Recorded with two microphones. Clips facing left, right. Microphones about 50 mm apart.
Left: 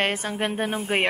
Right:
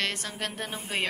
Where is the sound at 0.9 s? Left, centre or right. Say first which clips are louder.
Left 7 dB; left.